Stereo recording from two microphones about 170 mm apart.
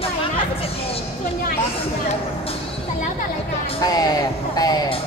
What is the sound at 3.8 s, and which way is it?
Speech, 20° left (ahead or behind).